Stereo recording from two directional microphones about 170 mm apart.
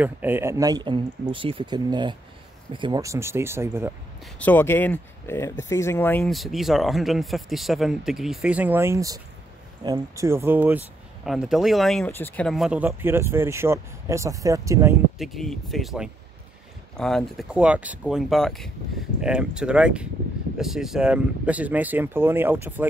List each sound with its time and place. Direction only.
0.0 s speech: 10° right (ahead or behind)
4.4 s speech: 10° left (ahead or behind); by 10.8 s 10° right (ahead or behind)
11.2 s speech: centre (ahead or behind); by 15.0 s 15° right (ahead or behind)
15.1 s speech: centre (ahead or behind)